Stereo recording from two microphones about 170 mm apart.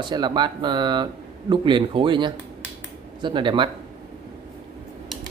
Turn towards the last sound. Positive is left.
turn(degrees=-30)  # may be behind; listen again after turning